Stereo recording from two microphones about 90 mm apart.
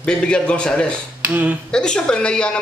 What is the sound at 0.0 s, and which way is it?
Speech, 10° left (ahead or behind).